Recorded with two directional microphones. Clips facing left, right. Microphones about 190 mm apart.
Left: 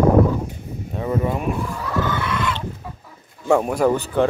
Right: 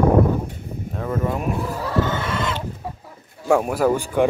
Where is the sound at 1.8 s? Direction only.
30° right (ahead or behind).